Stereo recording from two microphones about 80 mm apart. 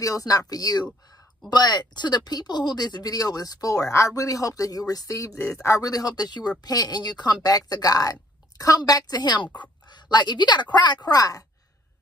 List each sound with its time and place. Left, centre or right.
0.0 s speech: left